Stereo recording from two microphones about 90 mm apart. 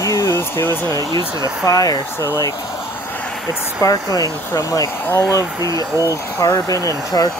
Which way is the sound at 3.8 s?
40° left (ahead or behind).